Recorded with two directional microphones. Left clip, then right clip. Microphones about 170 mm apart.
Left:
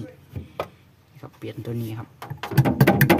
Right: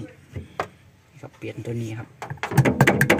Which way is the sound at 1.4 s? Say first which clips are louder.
Right 1 dB; 15° left (ahead or behind).